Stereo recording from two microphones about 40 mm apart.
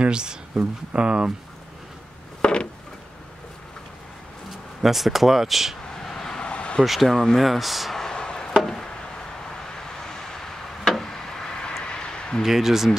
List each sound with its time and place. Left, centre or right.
0.0 s speech: right
2.4 s a sound: left
4.8 s speech: centre
5.9 s vehicle: centre
6.4 s vehicle: left
6.8 s speech: centre
7.1 s speech: centre
7.3 s speech: centre
8.0 s a sound: centre
9.7 s a sound: centre
12.4 s speech: centre